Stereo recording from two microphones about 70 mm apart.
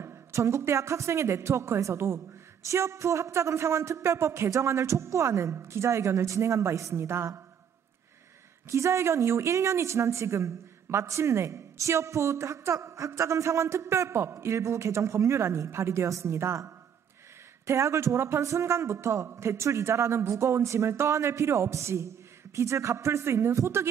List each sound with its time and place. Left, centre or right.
0.0 s speech: right
8.6 s speech: right